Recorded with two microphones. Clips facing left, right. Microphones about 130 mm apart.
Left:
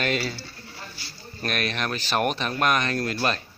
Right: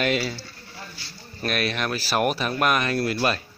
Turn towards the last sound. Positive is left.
turn(degrees=-5)  # may be behind; listen again after turning